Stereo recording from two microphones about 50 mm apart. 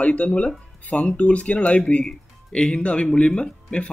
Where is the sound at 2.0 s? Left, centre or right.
Centre.